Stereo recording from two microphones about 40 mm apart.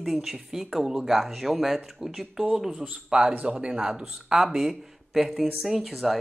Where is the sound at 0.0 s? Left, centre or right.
Centre.